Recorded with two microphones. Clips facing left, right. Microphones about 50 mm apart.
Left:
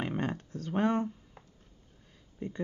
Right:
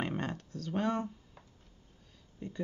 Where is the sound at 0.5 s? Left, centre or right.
Left.